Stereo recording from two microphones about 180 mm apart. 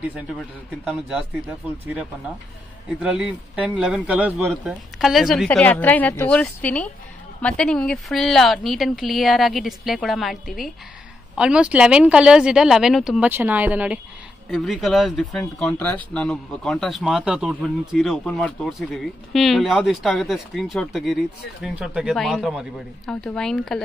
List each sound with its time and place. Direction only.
3.0 s speech: 5° right (ahead or behind)
14.5 s speech: centre (ahead or behind)